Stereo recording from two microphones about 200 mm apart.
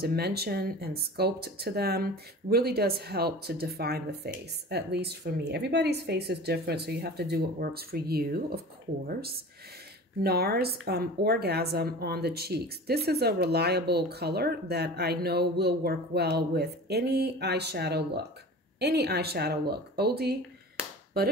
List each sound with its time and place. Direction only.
0.0 s a woman's voice: 50° right (ahead or behind)